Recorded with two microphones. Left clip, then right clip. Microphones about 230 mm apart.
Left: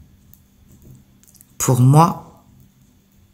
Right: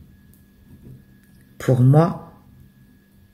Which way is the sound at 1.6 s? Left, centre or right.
Left.